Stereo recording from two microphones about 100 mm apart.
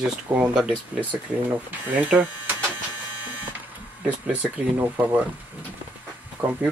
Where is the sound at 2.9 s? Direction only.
20° right (ahead or behind).